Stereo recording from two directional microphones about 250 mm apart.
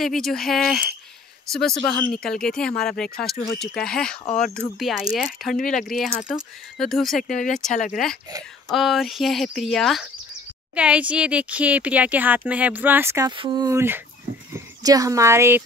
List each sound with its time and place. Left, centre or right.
0.0 s speech: centre
4.2 s speech: left
4.7 s speech: centre
5.6 s speech: left
6.2 s speech: centre
7.2 s speech: left
8.6 s speech: centre